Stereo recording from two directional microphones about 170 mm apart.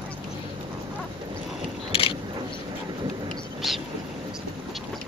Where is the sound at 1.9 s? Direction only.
35° left (ahead or behind).